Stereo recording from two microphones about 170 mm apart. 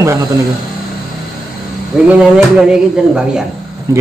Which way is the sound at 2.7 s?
5° right (ahead or behind).